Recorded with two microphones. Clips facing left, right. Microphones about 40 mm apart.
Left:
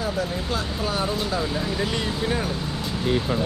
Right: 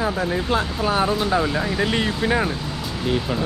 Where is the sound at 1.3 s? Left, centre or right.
Right.